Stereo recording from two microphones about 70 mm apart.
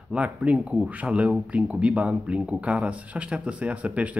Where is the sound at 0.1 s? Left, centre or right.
Centre.